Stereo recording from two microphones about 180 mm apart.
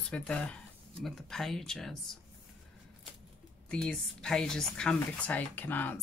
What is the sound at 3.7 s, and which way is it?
Speech, 5° left (ahead or behind).